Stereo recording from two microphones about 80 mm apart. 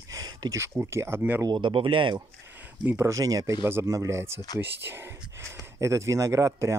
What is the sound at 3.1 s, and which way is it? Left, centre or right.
Speech, right.